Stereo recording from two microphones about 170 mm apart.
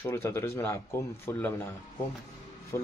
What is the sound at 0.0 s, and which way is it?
Speech, 15° left (ahead or behind).